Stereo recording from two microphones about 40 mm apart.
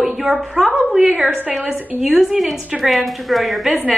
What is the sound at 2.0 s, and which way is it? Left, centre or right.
A woman's voice, centre.